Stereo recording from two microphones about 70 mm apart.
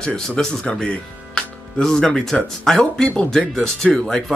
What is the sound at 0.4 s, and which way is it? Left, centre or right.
Speech, centre.